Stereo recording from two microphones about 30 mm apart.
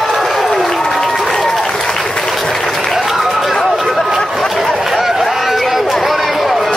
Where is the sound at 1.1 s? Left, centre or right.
Centre.